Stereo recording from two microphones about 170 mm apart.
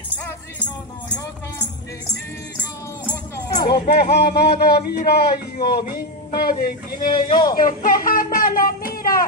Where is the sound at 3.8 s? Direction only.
70° left (ahead or behind).